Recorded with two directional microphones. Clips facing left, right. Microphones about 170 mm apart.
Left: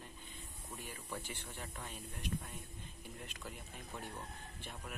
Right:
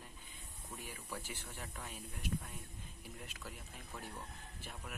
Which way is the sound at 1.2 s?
10° right (ahead or behind).